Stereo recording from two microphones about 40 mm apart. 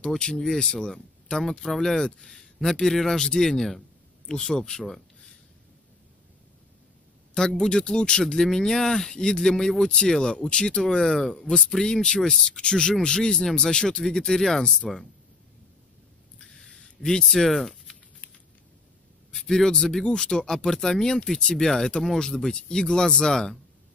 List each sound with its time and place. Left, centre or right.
0.2 s speech: centre
7.3 s speech: centre
14.8 s speech: centre
16.3 s a sound: centre
19.3 s a sound: centre
20.1 s speech: centre